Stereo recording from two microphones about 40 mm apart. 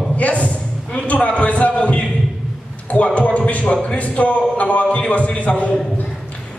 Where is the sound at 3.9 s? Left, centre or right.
Left.